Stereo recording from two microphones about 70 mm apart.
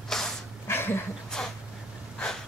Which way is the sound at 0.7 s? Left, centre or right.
Left.